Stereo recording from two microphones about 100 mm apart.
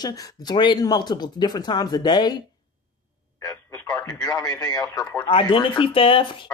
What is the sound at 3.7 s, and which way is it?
Radio, 25° left (ahead or behind).